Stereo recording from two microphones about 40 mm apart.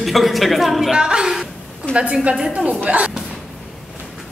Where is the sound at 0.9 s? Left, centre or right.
Centre.